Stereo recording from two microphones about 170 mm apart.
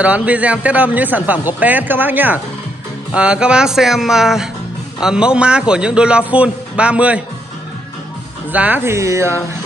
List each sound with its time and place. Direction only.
0.0 s speech: 10° right (ahead or behind)
8.5 s speech: 10° right (ahead or behind)